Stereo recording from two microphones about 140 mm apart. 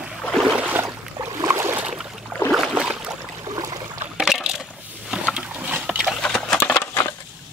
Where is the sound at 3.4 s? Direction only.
25° right (ahead or behind).